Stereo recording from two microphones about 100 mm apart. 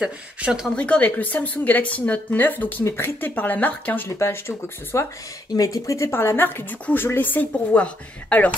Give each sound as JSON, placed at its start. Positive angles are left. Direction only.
{"t": 0.0, "sound": "speech", "side_deg": -5}
{"t": 0.7, "sound": "a woman's voice", "side_deg": 10}